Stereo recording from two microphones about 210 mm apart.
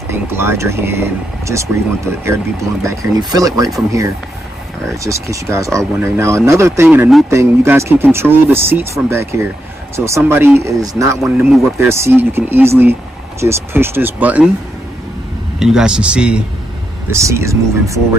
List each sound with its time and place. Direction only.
0.1 s speech: 10° right (ahead or behind)
15.6 s a man's voice: 5° right (ahead or behind)